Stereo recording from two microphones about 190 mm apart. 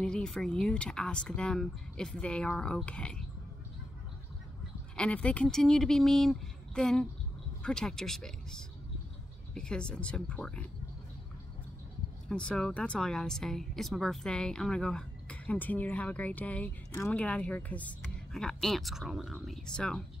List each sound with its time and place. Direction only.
0.0 s speech: 5° left (ahead or behind)
4.9 s speech: 5° left (ahead or behind)
12.3 s speech: 5° left (ahead or behind)